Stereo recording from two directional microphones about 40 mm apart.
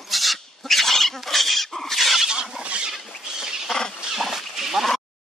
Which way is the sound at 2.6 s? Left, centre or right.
Right.